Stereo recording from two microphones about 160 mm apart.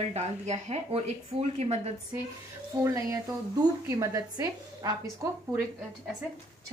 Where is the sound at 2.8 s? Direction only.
20° right (ahead or behind).